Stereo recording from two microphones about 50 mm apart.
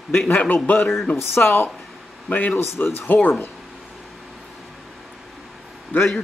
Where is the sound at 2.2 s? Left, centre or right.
Left.